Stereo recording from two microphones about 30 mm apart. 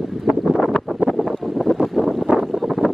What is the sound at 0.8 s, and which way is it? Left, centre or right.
Wind noise, centre.